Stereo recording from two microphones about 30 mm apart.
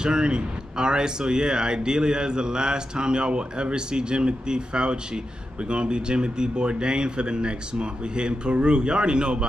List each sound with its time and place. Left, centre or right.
0.0 s speech: right